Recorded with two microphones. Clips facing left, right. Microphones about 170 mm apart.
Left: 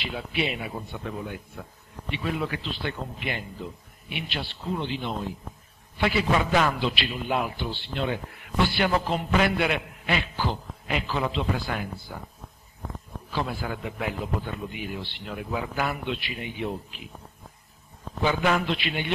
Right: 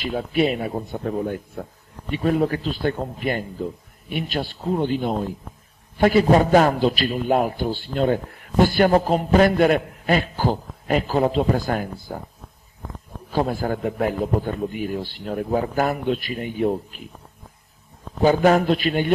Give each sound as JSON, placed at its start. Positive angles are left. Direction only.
{"t": 0.0, "sound": "a man's voice", "side_deg": -45}
{"t": 13.3, "sound": "a man's voice", "side_deg": -45}
{"t": 18.2, "sound": "a man's voice", "side_deg": -40}